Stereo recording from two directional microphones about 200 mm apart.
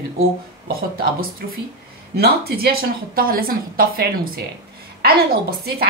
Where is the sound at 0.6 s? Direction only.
45° right (ahead or behind).